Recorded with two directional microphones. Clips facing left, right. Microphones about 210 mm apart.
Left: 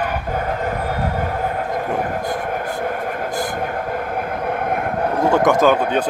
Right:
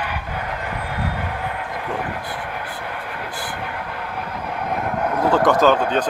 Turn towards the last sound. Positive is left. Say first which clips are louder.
# left 1 dB
turn(degrees=10)  # may be behind; listen again after turning